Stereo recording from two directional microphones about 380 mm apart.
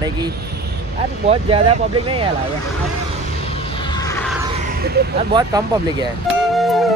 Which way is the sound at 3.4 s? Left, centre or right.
Centre.